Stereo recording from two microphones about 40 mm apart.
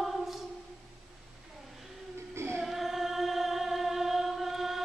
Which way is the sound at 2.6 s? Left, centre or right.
Centre.